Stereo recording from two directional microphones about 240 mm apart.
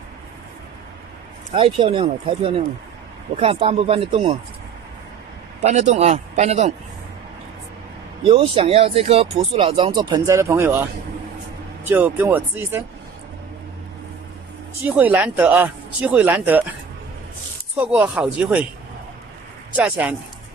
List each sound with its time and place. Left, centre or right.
1.5 s speech: right
5.6 s speech: right
8.3 s speech: right
11.9 s speech: centre
14.8 s speech: centre
17.7 s speech: centre
19.7 s speech: centre